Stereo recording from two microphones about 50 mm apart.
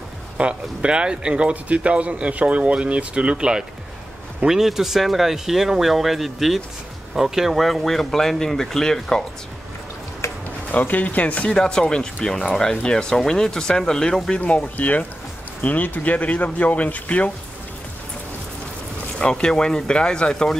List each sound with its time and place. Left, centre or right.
0.4 s speech: centre
10.2 s insect: left
10.7 s speech: left
11.5 s speech: centre
14.3 s speech: left
19.1 s speech: centre